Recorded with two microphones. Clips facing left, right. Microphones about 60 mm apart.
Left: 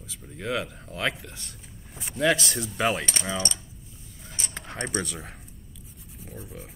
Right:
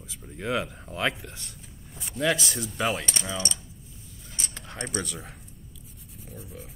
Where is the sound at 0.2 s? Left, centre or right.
Centre.